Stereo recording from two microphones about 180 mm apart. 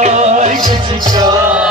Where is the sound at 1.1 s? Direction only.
20° right (ahead or behind).